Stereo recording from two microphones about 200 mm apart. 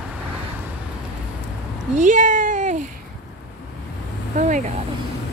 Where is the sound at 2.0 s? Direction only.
40° right (ahead or behind).